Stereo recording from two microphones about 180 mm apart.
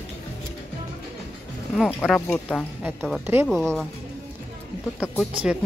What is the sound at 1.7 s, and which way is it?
Speech, centre (ahead or behind).